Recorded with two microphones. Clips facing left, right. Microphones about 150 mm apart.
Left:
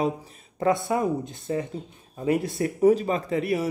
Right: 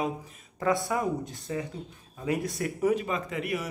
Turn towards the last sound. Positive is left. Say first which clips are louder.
# left 6 dB
turn(degrees=35)  # may be behind; listen again after turning